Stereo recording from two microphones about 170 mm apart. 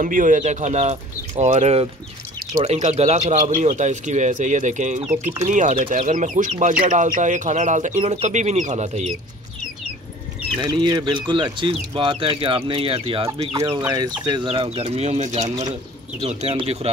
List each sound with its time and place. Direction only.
0.0 s speech: 50° right (ahead or behind)
10.6 s speech: 25° right (ahead or behind)
14.5 s speech: 35° right (ahead or behind)